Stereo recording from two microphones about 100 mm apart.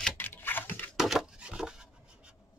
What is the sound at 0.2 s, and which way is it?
Computer keyboard, 20° left (ahead or behind).